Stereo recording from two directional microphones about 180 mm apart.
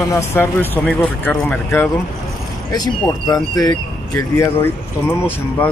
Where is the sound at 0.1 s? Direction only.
15° left (ahead or behind).